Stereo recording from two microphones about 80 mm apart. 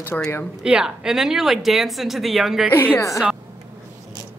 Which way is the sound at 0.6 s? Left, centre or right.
Centre.